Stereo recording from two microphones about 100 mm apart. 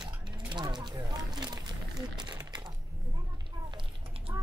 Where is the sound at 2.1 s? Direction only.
50° right (ahead or behind).